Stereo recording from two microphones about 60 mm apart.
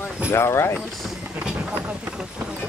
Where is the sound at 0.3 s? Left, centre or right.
Left.